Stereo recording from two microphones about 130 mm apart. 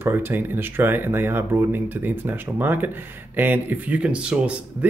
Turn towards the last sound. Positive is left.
turn(degrees=-10)  # may be behind; listen again after turning